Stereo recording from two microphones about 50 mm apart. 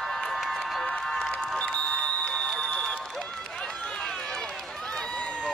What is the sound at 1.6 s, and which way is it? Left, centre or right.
Music, centre.